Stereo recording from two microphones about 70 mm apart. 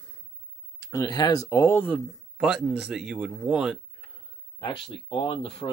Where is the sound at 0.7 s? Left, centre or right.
Left.